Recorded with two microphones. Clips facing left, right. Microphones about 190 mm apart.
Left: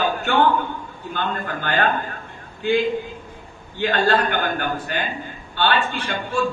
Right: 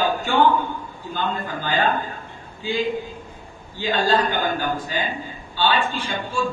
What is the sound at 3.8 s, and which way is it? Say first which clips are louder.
A man's voice: left 1 dB; 65° left (ahead or behind).